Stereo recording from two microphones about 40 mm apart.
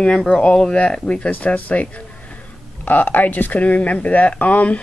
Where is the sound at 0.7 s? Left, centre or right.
Left.